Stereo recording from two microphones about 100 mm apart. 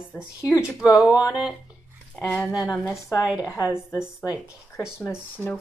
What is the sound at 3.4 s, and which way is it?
Speech, 30° left (ahead or behind).